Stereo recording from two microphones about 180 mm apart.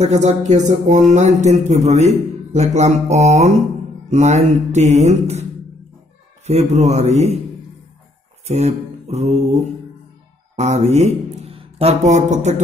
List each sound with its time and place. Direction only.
0.0 s speech: 40° right (ahead or behind)
6.4 s speech: 35° right (ahead or behind)
8.5 s speech: 35° right (ahead or behind)
10.5 s speech: 40° right (ahead or behind)